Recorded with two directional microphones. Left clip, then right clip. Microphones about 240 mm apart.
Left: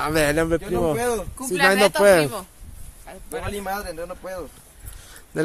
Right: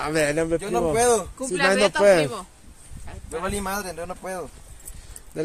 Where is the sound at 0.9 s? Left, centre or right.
Centre.